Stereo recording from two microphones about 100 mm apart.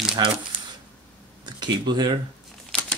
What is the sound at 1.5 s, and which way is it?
Speech, 50° right (ahead or behind).